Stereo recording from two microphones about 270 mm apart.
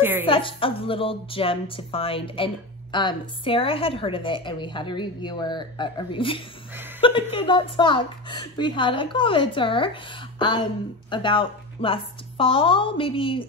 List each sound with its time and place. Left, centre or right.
0.3 s a woman's voice: centre